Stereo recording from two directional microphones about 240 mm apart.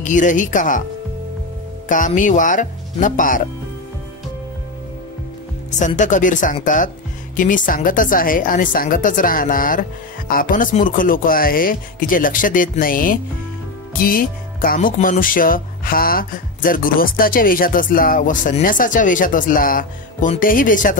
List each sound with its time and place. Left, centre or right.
0.0 s speech: left
1.9 s speech: left
5.7 s speech: left